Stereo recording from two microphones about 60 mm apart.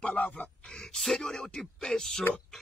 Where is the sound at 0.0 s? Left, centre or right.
Left.